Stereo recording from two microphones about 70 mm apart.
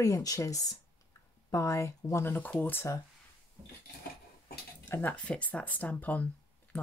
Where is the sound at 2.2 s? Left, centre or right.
Left.